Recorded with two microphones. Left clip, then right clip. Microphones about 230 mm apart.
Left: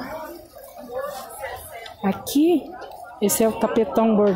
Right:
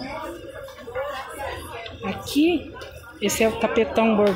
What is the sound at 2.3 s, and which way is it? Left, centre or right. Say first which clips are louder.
Speech: left 1 dB; left.